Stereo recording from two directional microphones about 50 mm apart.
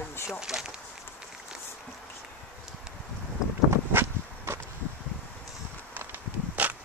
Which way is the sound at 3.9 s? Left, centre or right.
Right.